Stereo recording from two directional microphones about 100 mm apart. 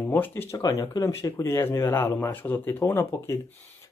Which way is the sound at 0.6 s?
40° left (ahead or behind).